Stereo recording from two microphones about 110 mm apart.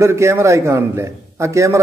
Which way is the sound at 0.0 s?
25° right (ahead or behind).